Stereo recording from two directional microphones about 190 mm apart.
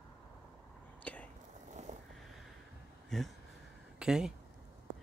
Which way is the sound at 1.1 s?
5° left (ahead or behind).